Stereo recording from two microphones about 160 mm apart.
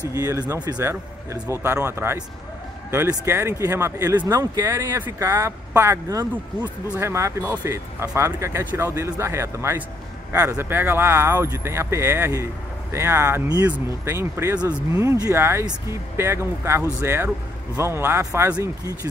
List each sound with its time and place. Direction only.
0.1 s speech: 20° right (ahead or behind)